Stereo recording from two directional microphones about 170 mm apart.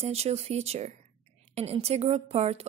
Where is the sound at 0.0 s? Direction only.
35° right (ahead or behind).